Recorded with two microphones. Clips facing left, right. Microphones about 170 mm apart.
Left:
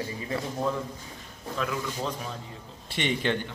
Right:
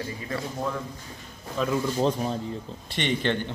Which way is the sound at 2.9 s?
5° left (ahead or behind).